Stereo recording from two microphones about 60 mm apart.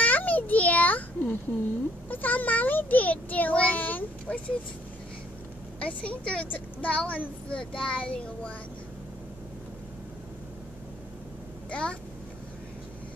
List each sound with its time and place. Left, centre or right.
0.0 s a sound: left
2.0 s a child's voice: left
5.8 s a child's voice: centre
11.7 s a child's voice: centre